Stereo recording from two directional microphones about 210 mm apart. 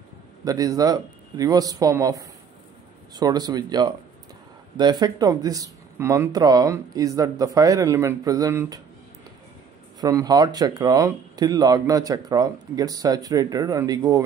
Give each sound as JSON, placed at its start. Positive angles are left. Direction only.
{"t": 0.5, "sound": "speech", "side_deg": -15}
{"t": 9.9, "sound": "speech", "side_deg": -15}